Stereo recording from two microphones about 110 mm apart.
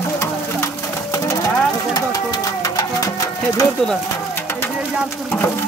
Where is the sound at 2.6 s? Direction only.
30° left (ahead or behind).